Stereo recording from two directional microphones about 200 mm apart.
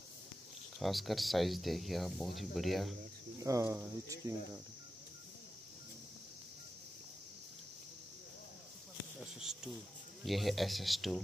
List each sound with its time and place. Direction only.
0.7 s speech: centre (ahead or behind)
3.4 s speech: 15° right (ahead or behind)
9.2 s speech: 5° right (ahead or behind)